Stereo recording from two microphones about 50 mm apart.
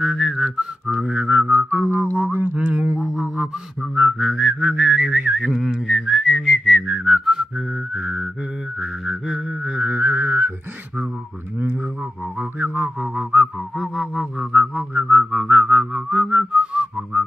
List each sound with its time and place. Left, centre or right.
0.0 s whistling: centre
1.1 s whistling: right
3.9 s whistling: centre
4.6 s whistling: right
5.4 s whistling: centre
9.8 s music: right
12.6 s music: right
13.0 s whistling: centre
13.7 s whistling: centre
14.5 s whistling: right